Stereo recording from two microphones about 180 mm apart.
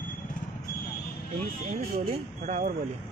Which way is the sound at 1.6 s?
40° right (ahead or behind).